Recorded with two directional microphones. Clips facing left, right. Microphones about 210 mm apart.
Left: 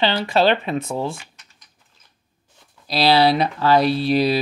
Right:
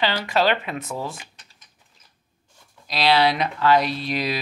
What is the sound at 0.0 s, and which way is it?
Speech, 30° left (ahead or behind).